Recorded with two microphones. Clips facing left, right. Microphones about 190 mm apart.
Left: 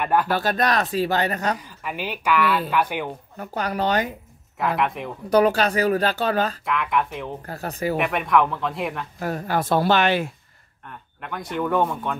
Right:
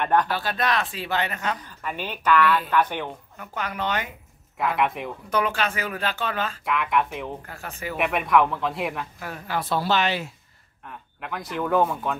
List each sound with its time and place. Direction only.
0.0 s a woman's voice: 5° left (ahead or behind)
0.3 s speech: 45° left (ahead or behind)
1.6 s a woman's voice: 10° left (ahead or behind)
3.3 s speech: 35° left (ahead or behind)
4.6 s speech: centre (ahead or behind)
5.3 s speech: 40° left (ahead or behind)
6.6 s speech: centre (ahead or behind)
7.4 s speech: 40° left (ahead or behind)
8.0 s speech: centre (ahead or behind)
9.2 s speech: 45° left (ahead or behind)
10.9 s speech: centre (ahead or behind)